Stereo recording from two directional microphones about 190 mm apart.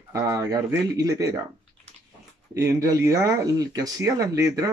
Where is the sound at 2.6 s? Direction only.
15° right (ahead or behind).